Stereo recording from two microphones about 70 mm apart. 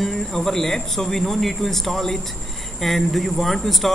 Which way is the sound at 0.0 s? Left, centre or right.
Centre.